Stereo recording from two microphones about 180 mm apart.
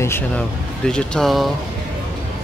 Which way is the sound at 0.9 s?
Centre (ahead or behind).